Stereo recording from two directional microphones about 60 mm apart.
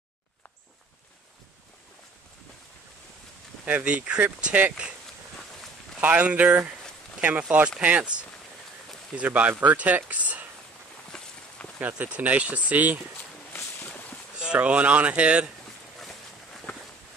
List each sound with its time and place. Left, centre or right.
3.6 s speech: right
5.9 s speech: right
11.1 s walk: centre
11.8 s speech: right
14.4 s speech: centre